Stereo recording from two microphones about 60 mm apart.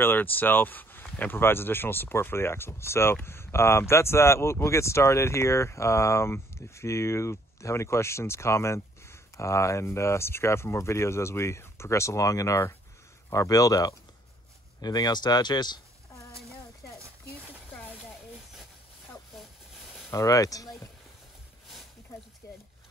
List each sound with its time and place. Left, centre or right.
0.0 s speech: left
20.1 s speech: left
22.4 s a sound: left